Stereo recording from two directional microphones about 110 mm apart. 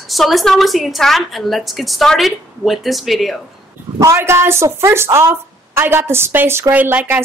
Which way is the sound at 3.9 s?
25° right (ahead or behind).